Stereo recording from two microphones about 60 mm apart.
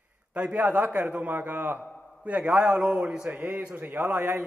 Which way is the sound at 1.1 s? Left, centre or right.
Right.